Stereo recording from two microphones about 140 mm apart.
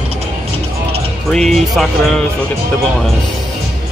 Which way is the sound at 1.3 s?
5° left (ahead or behind).